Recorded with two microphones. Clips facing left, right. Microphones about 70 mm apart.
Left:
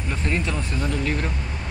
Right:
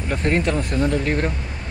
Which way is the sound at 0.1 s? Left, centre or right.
Right.